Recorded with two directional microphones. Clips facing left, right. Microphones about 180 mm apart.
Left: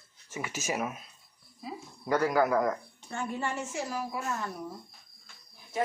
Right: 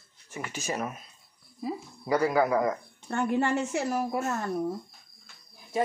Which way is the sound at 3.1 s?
65° right (ahead or behind).